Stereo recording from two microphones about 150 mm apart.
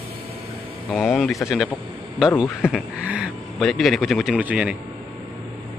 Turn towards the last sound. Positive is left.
turn(degrees=-10)  # may be behind; listen again after turning